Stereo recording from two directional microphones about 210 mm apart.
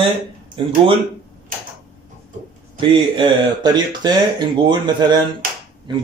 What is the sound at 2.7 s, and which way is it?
Speech, 25° right (ahead or behind).